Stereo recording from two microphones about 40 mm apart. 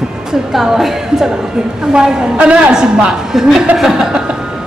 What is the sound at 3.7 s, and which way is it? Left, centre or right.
Speech, centre.